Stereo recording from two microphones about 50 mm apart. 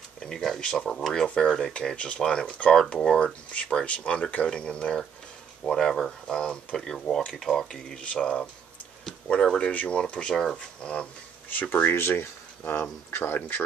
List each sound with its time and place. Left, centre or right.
0.2 s speech: centre
3.8 s speech: left
5.7 s speech: centre
9.7 s speech: left
9.9 s speech: centre
11.7 s speech: left